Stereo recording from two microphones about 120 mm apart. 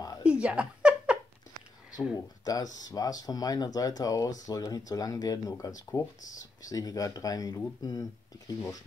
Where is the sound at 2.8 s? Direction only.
30° left (ahead or behind).